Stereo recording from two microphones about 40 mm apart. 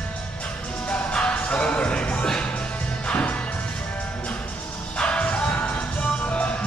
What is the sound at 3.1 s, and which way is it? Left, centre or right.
Music, left.